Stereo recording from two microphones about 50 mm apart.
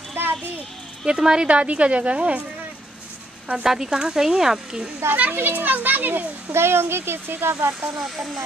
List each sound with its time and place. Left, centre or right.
0.1 s a sound: right
1.0 s speech: centre
1.5 s a woman's voice: right
3.6 s speech: centre
5.1 s a child's voice: right
6.5 s speech: right